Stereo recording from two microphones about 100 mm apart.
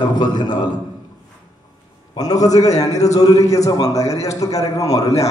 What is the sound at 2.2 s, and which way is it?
A man's voice, 40° left (ahead or behind).